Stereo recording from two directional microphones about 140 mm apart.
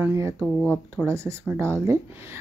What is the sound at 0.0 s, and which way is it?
Speech, 20° right (ahead or behind).